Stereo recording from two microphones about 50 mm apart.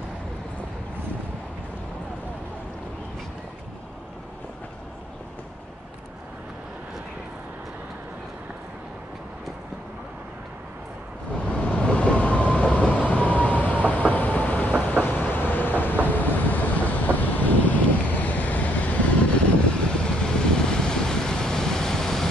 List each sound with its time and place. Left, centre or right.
11.5 s train: left
15.0 s vehicle: left; by 22.3 s centre